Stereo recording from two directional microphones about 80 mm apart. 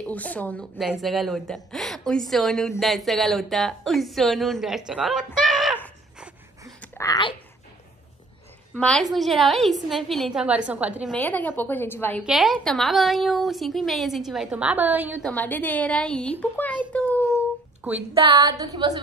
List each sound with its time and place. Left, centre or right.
0.0 s a woman's voice: centre
1.0 s speech: centre
7.0 s speech: left
8.7 s a woman's voice: centre
9.1 s speech: centre
10.4 s a woman's voice: centre
11.1 s a woman's voice: left
12.3 s speech: centre
14.6 s a woman's voice: centre
15.3 s a woman's voice: left
17.8 s a sound: centre
18.3 s a sound: right